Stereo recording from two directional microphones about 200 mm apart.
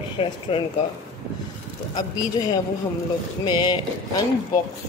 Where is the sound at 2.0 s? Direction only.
20° left (ahead or behind).